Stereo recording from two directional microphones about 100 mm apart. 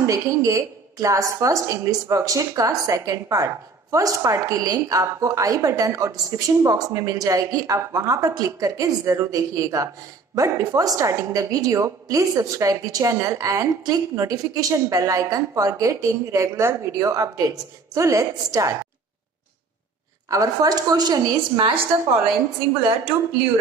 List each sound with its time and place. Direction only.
0.0 s a woman's voice: 30° right (ahead or behind)
20.2 s a woman's voice: 35° right (ahead or behind)